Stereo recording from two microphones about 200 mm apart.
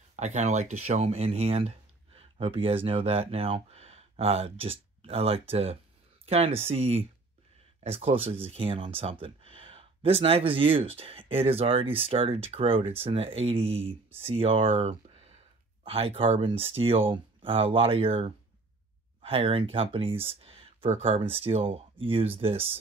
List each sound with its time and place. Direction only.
0.1 s speech: 35° right (ahead or behind)